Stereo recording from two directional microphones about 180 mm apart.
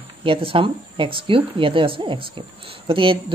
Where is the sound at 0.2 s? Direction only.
30° right (ahead or behind).